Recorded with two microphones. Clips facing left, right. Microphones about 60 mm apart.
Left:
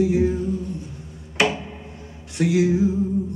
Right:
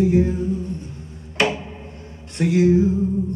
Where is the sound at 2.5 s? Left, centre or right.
Centre.